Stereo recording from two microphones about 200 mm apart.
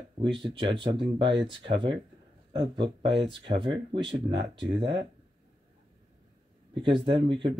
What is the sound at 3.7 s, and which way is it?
Speech, 60° right (ahead or behind).